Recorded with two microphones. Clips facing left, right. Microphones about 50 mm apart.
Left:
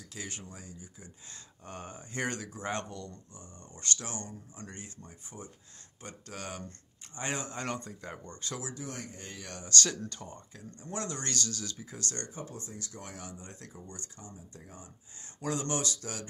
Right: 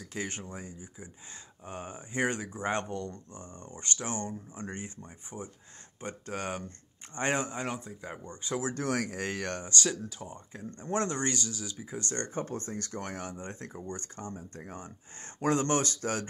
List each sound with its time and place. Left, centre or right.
0.1 s speech: right
3.7 s speech: right
7.5 s speech: centre
8.7 s speech: right
9.8 s speech: centre
10.5 s speech: right
11.2 s speech: centre
12.4 s speech: right